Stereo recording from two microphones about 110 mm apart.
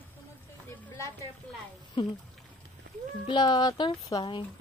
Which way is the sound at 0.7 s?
25° left (ahead or behind).